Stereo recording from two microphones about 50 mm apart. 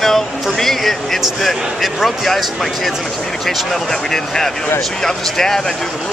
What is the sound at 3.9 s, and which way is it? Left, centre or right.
Speech, centre.